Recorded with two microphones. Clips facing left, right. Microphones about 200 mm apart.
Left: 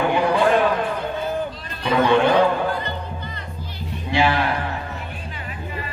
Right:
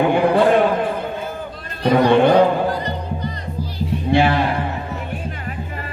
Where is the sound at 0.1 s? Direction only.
55° right (ahead or behind).